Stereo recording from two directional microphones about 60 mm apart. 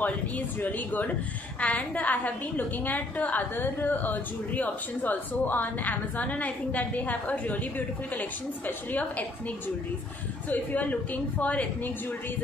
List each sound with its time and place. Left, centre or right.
0.6 s a woman's voice: left
10.5 s a woman's voice: left